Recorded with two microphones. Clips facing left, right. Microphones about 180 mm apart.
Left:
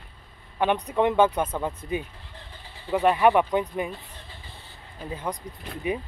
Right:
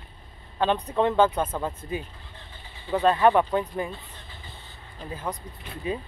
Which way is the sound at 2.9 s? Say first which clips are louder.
Even; 15° left (ahead or behind).